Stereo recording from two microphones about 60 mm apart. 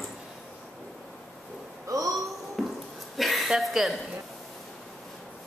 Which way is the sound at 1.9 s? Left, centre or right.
Right.